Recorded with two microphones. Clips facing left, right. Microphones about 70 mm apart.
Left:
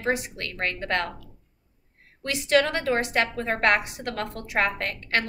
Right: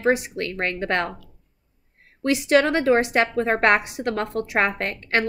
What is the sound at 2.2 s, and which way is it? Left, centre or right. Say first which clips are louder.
A woman's voice: right 4 dB; right.